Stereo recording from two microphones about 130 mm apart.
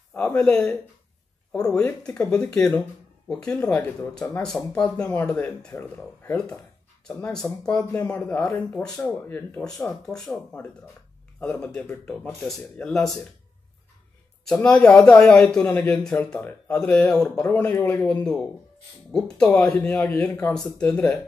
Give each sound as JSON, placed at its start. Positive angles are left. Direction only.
{"t": 0.1, "sound": "speech", "side_deg": 10}
{"t": 14.5, "sound": "speech", "side_deg": 5}